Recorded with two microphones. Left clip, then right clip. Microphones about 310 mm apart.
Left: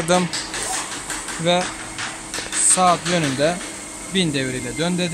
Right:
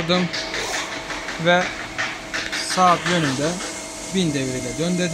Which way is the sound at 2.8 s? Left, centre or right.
Centre.